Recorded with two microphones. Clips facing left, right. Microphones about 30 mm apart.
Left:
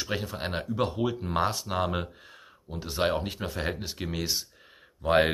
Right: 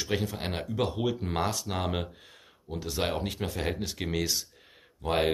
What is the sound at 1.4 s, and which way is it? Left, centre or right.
Speech, left.